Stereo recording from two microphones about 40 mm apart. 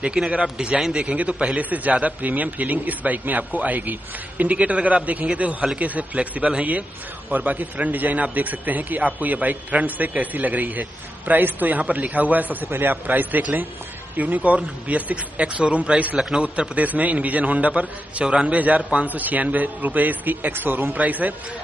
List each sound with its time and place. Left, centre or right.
0.0 s a man's voice: right
0.6 s a man's voice: centre
1.0 s a man's voice: right
4.6 s a man's voice: right
12.6 s speech: right
12.9 s a man's voice: right
19.0 s a man's voice: right
20.9 s a man's voice: right